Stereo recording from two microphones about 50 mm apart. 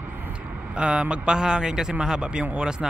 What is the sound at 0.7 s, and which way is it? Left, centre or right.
Speech, right.